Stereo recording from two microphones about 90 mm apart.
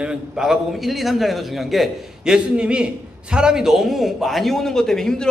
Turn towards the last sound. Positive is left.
turn(degrees=5)  # may be behind; listen again after turning